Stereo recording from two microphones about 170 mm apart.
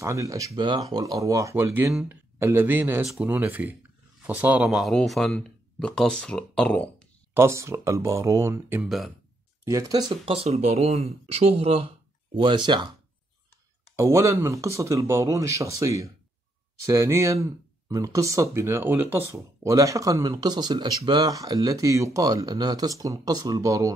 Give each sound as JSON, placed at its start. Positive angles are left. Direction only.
{"t": 0.0, "sound": "speech", "side_deg": -20}
{"t": 7.3, "sound": "speech", "side_deg": -15}
{"t": 8.8, "sound": "speech", "side_deg": 0}
{"t": 9.7, "sound": "speech", "side_deg": -20}
{"t": 13.9, "sound": "speech", "side_deg": -15}